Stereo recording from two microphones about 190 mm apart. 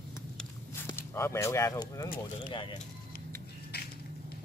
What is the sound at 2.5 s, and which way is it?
Speech, 30° left (ahead or behind).